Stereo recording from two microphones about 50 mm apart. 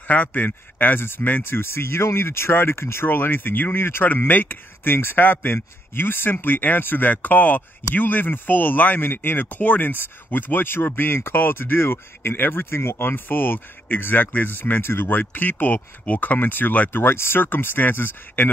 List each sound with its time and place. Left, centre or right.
0.1 s speech: left
3.1 s speech: left
17.0 s speech: left